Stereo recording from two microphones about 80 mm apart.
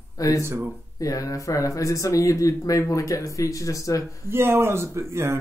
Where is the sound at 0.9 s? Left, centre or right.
Left.